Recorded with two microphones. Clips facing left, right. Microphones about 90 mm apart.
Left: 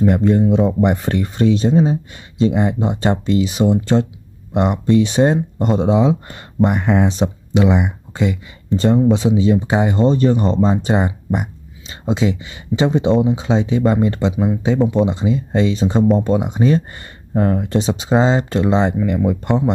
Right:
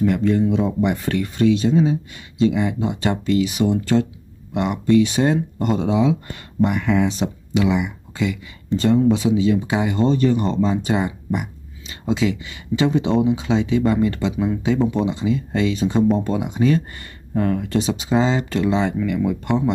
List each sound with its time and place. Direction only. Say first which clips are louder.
0.0 s speech: left 3 dB; 30° left (ahead or behind)